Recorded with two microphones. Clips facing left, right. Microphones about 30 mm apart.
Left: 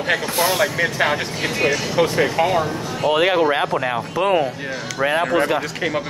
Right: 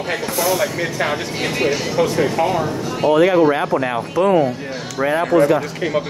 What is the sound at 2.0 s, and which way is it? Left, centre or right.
Speech, left.